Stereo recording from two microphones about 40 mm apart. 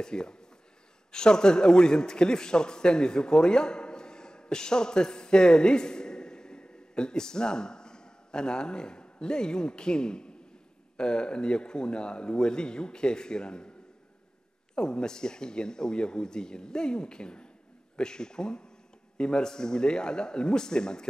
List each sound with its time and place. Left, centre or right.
0.0 s a man's voice: centre
14.8 s a man's voice: centre